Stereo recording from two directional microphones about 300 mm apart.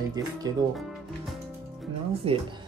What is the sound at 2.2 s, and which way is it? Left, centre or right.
Speech, centre.